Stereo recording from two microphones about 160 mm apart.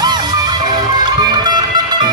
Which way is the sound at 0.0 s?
25° right (ahead or behind).